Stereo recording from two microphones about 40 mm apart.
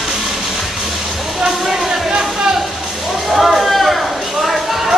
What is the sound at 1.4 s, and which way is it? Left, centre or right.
Music, centre.